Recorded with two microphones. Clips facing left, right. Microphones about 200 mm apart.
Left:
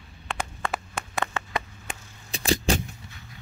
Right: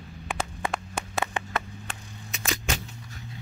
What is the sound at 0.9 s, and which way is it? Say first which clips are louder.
Clapping: even; 10° right (ahead or behind).